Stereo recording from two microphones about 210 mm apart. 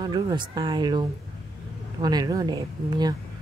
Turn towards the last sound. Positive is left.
turn(degrees=-20)  # may be behind; listen again after turning